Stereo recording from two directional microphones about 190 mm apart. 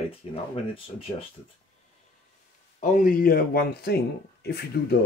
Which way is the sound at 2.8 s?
45° left (ahead or behind).